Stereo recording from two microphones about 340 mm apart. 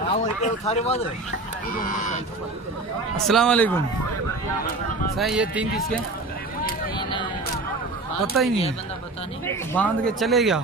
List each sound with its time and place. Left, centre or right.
0.1 s speech: centre
1.8 s goose: left
3.3 s speech: centre
5.1 s speech: centre
7.0 s a sound: centre
8.3 s speech: centre
9.7 s speech: centre